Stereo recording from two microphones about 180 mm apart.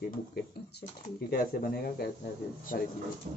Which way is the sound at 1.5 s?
55° left (ahead or behind).